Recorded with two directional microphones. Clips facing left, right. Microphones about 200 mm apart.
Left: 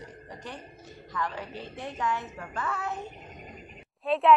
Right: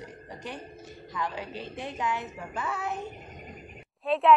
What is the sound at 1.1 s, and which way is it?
A woman's voice, 15° right (ahead or behind).